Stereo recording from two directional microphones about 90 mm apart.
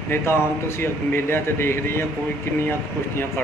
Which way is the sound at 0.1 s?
30° left (ahead or behind).